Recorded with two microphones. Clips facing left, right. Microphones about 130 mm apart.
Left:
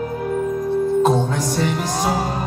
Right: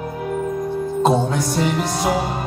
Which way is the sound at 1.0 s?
5° right (ahead or behind).